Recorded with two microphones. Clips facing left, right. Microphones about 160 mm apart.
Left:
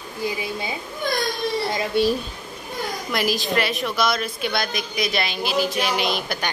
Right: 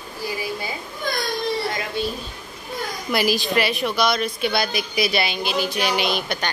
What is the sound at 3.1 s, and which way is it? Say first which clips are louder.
A woman's voice: right 3 dB; centre (ahead or behind).